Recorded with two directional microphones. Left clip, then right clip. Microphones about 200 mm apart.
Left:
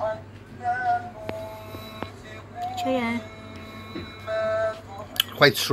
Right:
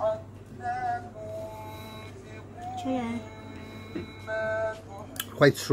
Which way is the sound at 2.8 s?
5° right (ahead or behind).